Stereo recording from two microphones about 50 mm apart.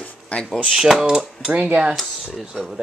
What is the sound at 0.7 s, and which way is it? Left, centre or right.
Speech, centre.